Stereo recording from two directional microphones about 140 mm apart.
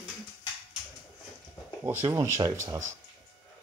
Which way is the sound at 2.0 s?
20° right (ahead or behind).